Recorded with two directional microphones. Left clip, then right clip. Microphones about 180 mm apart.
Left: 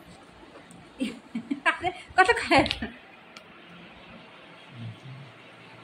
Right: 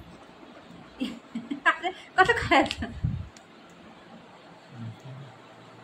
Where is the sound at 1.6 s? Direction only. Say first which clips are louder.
Right 1 dB; 25° left (ahead or behind).